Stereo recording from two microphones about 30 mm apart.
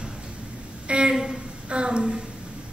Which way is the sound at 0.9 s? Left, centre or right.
Right.